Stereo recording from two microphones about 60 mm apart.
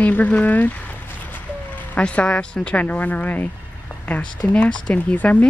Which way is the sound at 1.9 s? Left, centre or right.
Left.